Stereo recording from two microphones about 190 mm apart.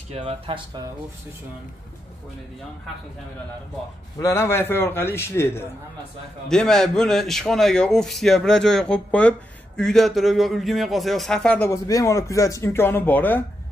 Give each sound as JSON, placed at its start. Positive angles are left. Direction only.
{"t": 0.1, "sound": "speech", "side_deg": -30}
{"t": 4.2, "sound": "a man's voice", "side_deg": 15}
{"t": 11.7, "sound": "speech", "side_deg": 15}